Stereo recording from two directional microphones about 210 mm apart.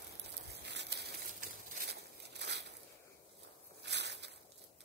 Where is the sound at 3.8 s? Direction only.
55° right (ahead or behind).